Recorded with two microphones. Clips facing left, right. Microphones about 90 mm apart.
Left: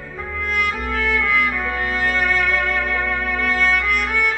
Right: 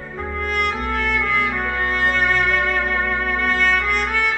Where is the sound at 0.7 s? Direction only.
40° right (ahead or behind).